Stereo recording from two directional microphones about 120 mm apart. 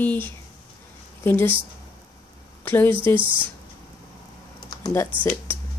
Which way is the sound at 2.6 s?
15° left (ahead or behind).